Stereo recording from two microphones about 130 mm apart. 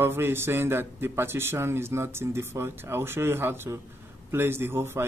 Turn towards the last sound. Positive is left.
turn(degrees=-20)  # may be behind; listen again after turning